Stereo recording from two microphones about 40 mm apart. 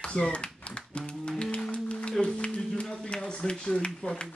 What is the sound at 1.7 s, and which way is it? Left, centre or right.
Music, left.